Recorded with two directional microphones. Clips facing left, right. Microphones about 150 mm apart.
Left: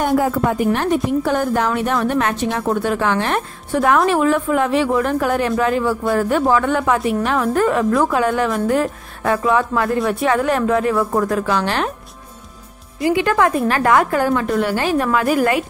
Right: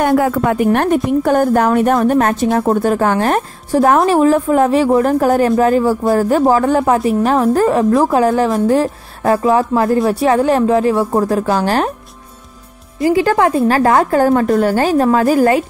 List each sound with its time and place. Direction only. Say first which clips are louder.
0.0 s a woman's voice: right 4 dB; 75° right (ahead or behind)
0.7 s a woman's voice: right 4 dB; 55° right (ahead or behind)
13.0 s a woman's voice: right 4 dB; 35° right (ahead or behind)